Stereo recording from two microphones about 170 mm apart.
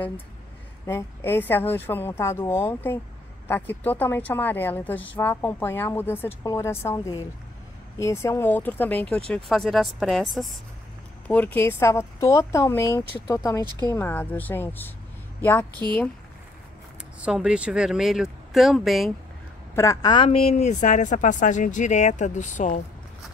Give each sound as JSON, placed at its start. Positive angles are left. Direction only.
{"t": 0.8, "sound": "a woman's voice", "side_deg": 15}
{"t": 17.2, "sound": "speech", "side_deg": -5}
{"t": 19.7, "sound": "speech", "side_deg": 20}
{"t": 20.2, "sound": "speech", "side_deg": 35}